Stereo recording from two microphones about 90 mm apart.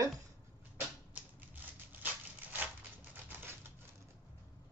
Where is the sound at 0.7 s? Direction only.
20° right (ahead or behind).